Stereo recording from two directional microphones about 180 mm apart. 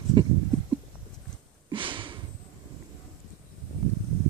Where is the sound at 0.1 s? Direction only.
25° right (ahead or behind).